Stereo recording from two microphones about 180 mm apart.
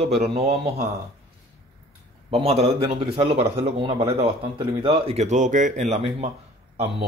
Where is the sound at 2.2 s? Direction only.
30° right (ahead or behind).